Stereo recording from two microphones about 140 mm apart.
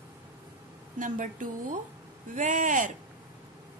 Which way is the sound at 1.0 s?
70° right (ahead or behind).